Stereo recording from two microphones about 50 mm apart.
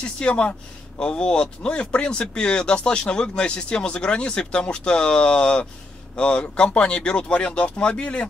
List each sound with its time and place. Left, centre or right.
0.0 s speech: left